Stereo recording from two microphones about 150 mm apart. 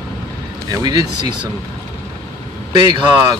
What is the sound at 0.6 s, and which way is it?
Speech, 25° right (ahead or behind).